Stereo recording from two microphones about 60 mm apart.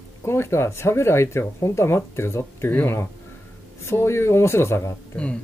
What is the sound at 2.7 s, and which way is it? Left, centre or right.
Speech, left.